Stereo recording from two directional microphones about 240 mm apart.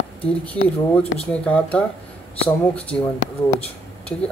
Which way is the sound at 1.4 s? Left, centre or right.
Centre.